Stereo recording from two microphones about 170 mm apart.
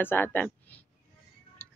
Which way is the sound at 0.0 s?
10° left (ahead or behind).